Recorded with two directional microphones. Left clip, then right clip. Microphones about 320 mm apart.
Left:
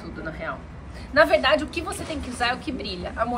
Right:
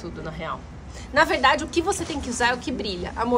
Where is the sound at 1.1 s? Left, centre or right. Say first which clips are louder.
Left 1 dB; right.